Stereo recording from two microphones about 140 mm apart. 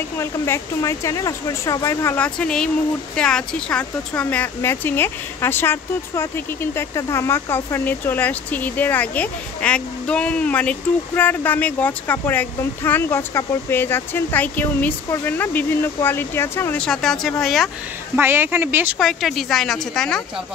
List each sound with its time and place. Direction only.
0.2 s speech: 20° left (ahead or behind)
16.8 s a woman's voice: 5° left (ahead or behind)
18.1 s speech: 15° right (ahead or behind)
18.9 s a woman's voice: centre (ahead or behind)